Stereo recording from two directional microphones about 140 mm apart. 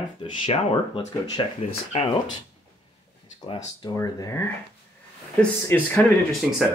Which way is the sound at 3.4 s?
35° left (ahead or behind).